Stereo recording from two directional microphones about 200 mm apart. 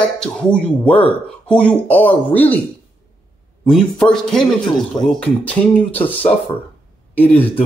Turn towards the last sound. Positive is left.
turn(degrees=10)  # may be behind; listen again after turning